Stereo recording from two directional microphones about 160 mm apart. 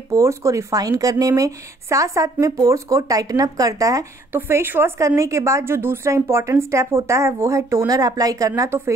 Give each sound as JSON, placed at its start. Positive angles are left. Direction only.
{"t": 0.1, "sound": "speech", "side_deg": -20}